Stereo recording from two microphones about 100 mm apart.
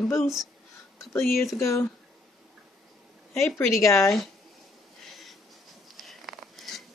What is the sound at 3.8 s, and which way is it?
Speech, 30° left (ahead or behind).